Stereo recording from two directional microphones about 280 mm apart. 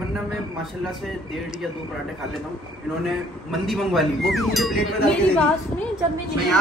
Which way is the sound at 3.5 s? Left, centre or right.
Centre.